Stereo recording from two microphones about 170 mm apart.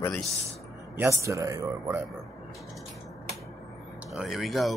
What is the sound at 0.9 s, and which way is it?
A man's voice, 15° right (ahead or behind).